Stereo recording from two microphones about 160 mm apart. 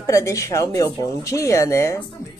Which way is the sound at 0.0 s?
20° left (ahead or behind).